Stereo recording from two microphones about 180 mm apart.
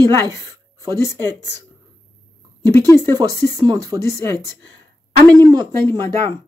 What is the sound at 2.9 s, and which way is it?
Speech, 20° right (ahead or behind).